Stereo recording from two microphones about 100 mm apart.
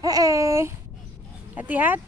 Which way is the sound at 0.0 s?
35° right (ahead or behind).